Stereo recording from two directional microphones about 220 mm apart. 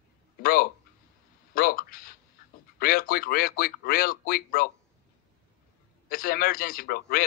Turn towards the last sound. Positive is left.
turn(degrees=40)  # may be behind; listen again after turning